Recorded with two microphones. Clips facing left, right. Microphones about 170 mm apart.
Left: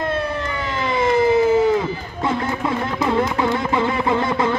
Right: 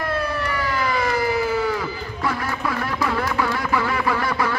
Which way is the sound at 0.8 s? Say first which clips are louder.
Left 8 dB; 20° left (ahead or behind).